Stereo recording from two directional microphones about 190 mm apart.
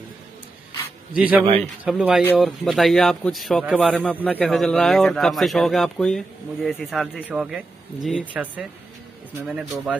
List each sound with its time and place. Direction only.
1.1 s a man's voice: 10° right (ahead or behind)